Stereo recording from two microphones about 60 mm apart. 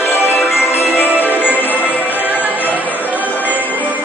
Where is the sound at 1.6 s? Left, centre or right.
Left.